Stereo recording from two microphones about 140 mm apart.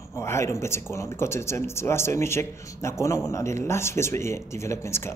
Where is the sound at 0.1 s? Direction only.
20° left (ahead or behind).